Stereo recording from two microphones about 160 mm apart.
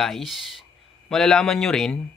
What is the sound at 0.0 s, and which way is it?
Speech, centre (ahead or behind).